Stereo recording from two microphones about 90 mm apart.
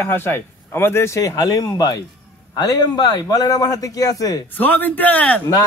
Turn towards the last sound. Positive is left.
turn(degrees=15)  # may be behind; listen again after turning